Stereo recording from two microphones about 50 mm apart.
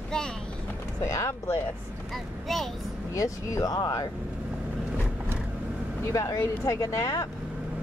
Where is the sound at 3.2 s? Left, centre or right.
Left.